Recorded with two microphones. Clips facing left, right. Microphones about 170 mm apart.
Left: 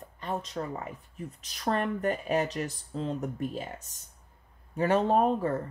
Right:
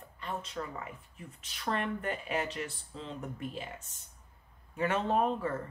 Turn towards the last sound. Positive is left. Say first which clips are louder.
# left 5 dB
turn(degrees=40)  # may be behind; listen again after turning